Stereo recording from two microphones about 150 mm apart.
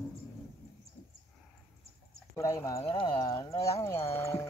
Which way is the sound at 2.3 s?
20° left (ahead or behind).